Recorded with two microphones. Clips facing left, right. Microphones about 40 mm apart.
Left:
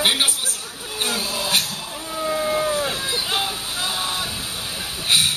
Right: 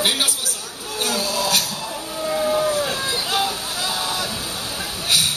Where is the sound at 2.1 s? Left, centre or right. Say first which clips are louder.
Right 1 dB; centre.